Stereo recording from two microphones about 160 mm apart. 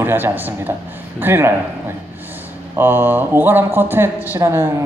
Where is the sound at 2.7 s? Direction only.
15° right (ahead or behind).